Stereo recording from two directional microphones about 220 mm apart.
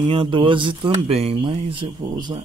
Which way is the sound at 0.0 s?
20° right (ahead or behind).